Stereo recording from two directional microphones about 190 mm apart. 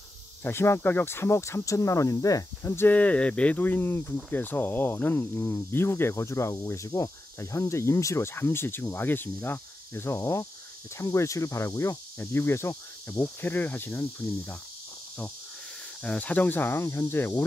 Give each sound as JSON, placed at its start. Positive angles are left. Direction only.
{"t": 0.4, "sound": "speech", "side_deg": 10}
{"t": 16.0, "sound": "speech", "side_deg": 5}